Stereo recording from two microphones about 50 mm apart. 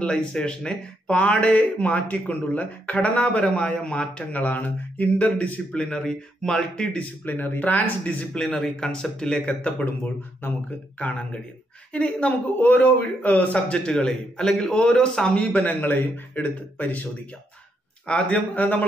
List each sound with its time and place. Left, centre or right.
0.0 s speech: centre
5.7 s a man's voice: centre
7.2 s speech: left; by 9.4 s centre
9.5 s speech: left
11.0 s speech: left
12.3 s speech: left; by 15.4 s centre
15.4 s a man's voice: left
18.0 s speech: left